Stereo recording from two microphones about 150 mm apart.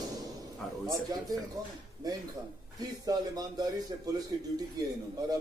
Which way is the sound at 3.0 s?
25° right (ahead or behind).